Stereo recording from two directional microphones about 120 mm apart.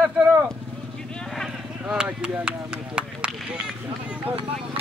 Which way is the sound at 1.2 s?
5° left (ahead or behind).